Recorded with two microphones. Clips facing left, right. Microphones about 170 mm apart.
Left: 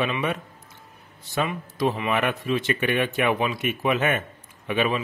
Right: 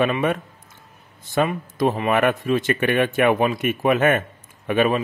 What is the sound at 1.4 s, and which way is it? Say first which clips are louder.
A man's voice: right 5 dB; 50° right (ahead or behind).